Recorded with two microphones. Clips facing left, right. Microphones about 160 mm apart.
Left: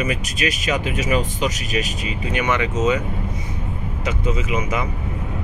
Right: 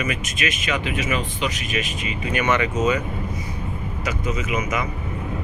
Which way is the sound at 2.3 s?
15° left (ahead or behind).